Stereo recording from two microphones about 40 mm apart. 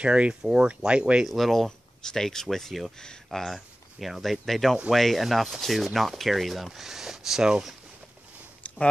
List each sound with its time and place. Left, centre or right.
0.0 s speech: right
1.2 s speech: centre
8.6 s a sound: left